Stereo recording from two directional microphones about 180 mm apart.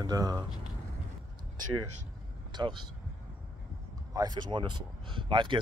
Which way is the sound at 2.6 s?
25° right (ahead or behind).